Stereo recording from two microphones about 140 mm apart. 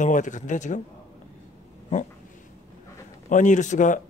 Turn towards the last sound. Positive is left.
turn(degrees=60)  # may be behind; listen again after turning